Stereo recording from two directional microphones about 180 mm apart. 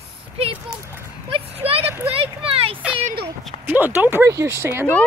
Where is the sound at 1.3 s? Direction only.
30° right (ahead or behind).